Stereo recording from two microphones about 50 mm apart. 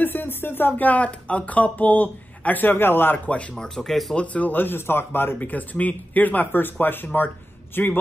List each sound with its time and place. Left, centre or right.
0.0 s speech: left
3.5 s speech: centre
4.1 s a man's voice: left
4.6 s a man's voice: left
5.4 s speech: left